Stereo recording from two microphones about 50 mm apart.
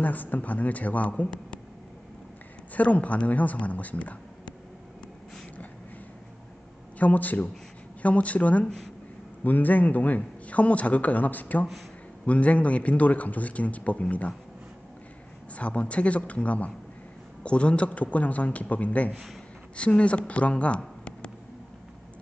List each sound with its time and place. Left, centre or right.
0.0 s speech: left; by 1.6 s centre
2.7 s a man's voice: left
7.0 s a man's voice: left
15.5 s a man's voice: left